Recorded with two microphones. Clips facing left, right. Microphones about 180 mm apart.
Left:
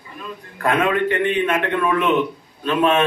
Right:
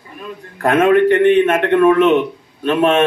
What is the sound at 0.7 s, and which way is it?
A man's voice, 45° right (ahead or behind).